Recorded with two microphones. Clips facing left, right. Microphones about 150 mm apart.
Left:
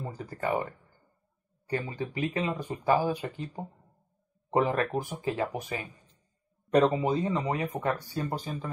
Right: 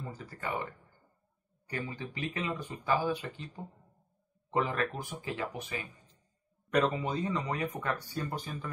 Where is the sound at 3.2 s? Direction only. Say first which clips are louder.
Left 6 dB; 40° left (ahead or behind).